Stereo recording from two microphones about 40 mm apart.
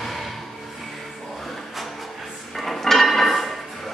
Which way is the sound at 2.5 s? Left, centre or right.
Centre.